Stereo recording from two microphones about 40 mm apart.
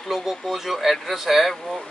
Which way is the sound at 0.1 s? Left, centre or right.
Centre.